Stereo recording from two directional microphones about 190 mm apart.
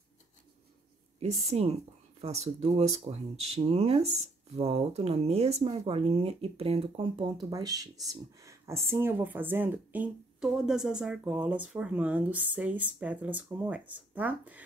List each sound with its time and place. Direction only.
1.2 s speech: 35° right (ahead or behind); by 14.6 s 10° right (ahead or behind)